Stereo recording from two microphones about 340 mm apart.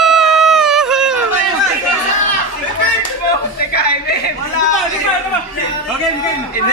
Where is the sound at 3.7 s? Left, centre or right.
Left.